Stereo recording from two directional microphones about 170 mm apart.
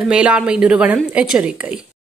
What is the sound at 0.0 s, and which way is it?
Speech, 5° right (ahead or behind).